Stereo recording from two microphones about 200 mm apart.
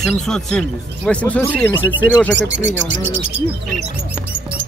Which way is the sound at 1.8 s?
10° right (ahead or behind).